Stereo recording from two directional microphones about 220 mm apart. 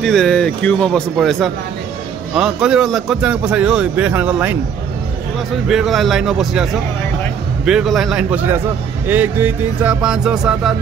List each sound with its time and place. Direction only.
0.0 s a man's voice: 5° left (ahead or behind)
5.7 s a man's voice: centre (ahead or behind)